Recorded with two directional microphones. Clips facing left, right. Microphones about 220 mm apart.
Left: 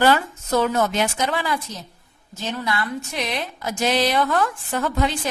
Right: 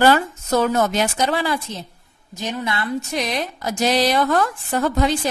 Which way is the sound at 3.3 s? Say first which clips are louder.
Right 3 dB; 40° right (ahead or behind).